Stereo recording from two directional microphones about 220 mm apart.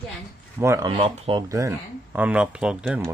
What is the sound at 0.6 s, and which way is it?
Speech, 15° right (ahead or behind).